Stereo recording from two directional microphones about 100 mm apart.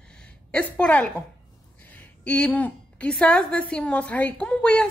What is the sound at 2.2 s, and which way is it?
A woman's voice, 15° left (ahead or behind).